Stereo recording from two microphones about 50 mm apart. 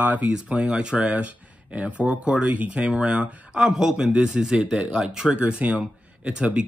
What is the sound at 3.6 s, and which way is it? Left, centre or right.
Speech, centre.